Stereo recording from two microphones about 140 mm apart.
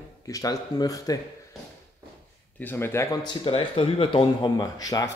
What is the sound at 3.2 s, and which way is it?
Speech, 35° left (ahead or behind).